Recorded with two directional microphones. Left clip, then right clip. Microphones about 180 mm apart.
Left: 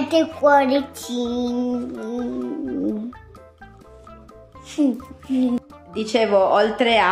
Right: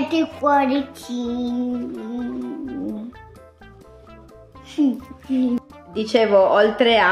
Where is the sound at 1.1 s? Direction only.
30° left (ahead or behind).